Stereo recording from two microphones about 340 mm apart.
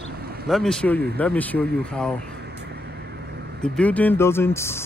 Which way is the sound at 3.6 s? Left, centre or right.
Centre.